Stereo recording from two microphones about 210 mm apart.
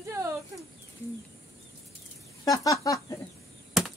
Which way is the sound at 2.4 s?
15° left (ahead or behind).